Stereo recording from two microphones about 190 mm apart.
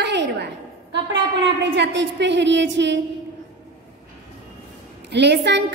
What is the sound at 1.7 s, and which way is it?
A woman's voice, 70° right (ahead or behind).